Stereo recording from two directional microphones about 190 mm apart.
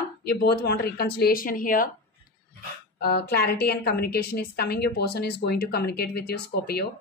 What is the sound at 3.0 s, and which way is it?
Speech, 55° left (ahead or behind).